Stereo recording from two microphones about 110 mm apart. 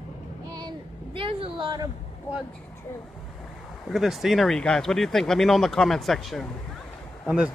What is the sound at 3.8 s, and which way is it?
Speech, centre (ahead or behind).